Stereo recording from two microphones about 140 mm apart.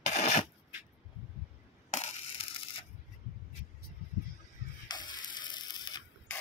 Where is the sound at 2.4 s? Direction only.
40° left (ahead or behind).